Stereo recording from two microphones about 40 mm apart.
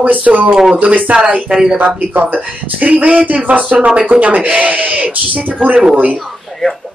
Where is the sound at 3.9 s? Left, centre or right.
Right.